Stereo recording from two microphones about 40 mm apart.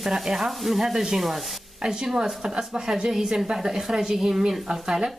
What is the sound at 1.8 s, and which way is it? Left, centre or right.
A woman's voice, centre.